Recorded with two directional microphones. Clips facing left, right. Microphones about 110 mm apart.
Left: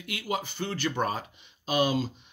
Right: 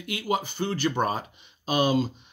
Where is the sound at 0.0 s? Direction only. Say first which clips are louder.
Right 4 dB; 25° right (ahead or behind).